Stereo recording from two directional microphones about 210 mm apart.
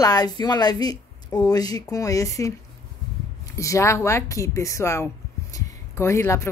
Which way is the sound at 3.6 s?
15° left (ahead or behind).